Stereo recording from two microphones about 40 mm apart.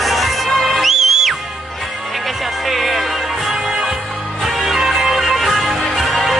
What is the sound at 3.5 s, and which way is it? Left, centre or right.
Music, centre.